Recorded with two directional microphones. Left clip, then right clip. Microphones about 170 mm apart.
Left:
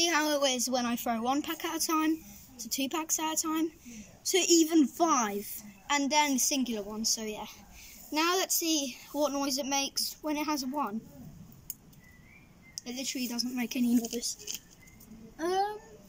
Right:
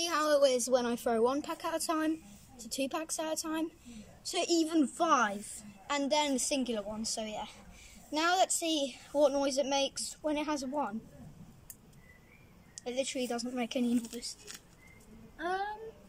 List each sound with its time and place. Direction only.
0.0 s a woman's voice: 30° right (ahead or behind)
12.8 s a child's voice: 15° right (ahead or behind)
14.2 s speech: 20° left (ahead or behind)
15.3 s a child's voice: 30° left (ahead or behind)